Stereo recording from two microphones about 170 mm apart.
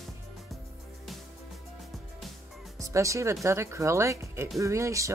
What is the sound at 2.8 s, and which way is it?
Speech, 20° right (ahead or behind).